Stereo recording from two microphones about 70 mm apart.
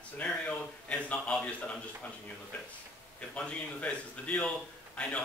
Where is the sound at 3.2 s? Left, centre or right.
Centre.